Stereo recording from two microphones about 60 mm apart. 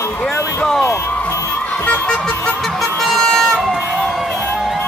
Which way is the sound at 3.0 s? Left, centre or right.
Centre.